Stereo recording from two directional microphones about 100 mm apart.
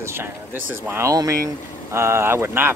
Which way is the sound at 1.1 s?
35° right (ahead or behind).